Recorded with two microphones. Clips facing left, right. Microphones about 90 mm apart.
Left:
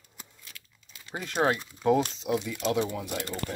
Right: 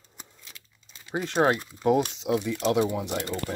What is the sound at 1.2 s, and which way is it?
Speech, 30° right (ahead or behind).